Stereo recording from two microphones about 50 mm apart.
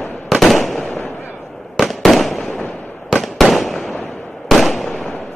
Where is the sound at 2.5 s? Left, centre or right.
Centre.